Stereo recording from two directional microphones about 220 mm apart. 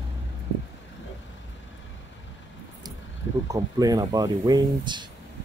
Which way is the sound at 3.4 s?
15° right (ahead or behind).